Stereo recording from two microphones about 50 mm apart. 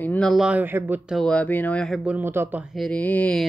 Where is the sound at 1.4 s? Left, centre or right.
Left.